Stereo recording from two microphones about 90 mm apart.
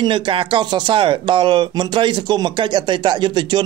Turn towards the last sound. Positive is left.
turn(degrees=-55)  # may be behind; listen again after turning